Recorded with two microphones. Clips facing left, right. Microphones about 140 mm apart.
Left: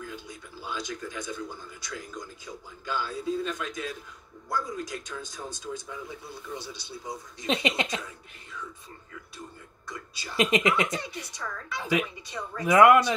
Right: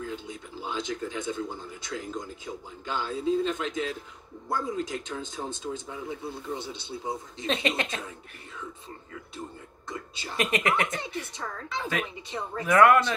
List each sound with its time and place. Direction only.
0.0 s speech: 25° right (ahead or behind)
7.6 s speech: 15° left (ahead or behind)
9.8 s a sound: 25° right (ahead or behind)
10.3 s speech: 20° left (ahead or behind)
11.3 s speech: 25° right (ahead or behind)
11.8 s speech: 15° left (ahead or behind)
12.3 s speech: 25° right (ahead or behind)
12.6 s speech: 15° left (ahead or behind)